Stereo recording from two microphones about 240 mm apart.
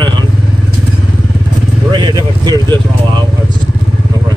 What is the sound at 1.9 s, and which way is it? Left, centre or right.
Speech, centre.